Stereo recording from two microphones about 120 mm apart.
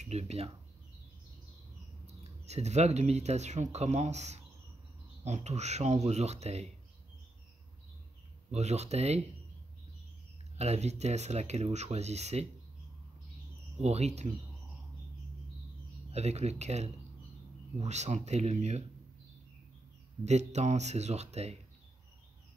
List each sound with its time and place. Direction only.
0.0 s speech: 65° right (ahead or behind)
2.4 s speech: 65° right (ahead or behind)
8.5 s speech: 65° right (ahead or behind)
10.6 s speech: 65° right (ahead or behind)
13.7 s speech: 65° right (ahead or behind)
16.1 s speech: 65° right (ahead or behind)
20.2 s speech: 70° right (ahead or behind)